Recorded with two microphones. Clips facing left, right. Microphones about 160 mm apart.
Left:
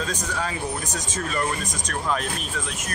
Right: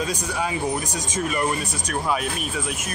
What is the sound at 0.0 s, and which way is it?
Speech, 10° right (ahead or behind).